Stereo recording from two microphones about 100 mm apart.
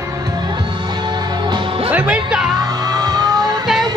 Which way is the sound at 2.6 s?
40° right (ahead or behind).